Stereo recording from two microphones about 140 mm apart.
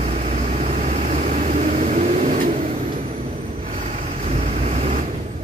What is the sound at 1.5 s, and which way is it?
Vehicle, 60° right (ahead or behind).